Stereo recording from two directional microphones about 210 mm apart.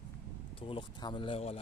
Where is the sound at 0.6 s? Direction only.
25° left (ahead or behind).